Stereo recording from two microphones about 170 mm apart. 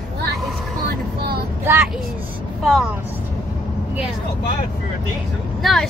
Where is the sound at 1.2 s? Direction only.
65° right (ahead or behind).